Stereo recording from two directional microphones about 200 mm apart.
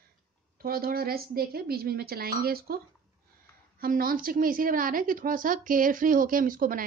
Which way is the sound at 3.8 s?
45° right (ahead or behind).